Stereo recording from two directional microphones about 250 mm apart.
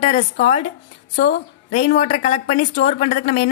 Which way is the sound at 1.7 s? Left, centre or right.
Left.